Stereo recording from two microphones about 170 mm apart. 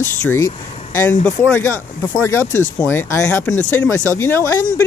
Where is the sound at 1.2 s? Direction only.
10° left (ahead or behind).